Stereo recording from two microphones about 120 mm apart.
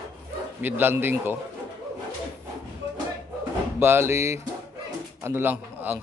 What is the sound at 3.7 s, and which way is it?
Speech, 20° right (ahead or behind).